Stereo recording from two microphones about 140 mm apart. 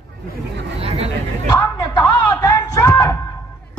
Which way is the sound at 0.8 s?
45° right (ahead or behind).